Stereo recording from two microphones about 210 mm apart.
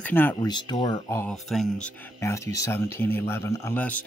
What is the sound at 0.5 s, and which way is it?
Speech, 20° left (ahead or behind).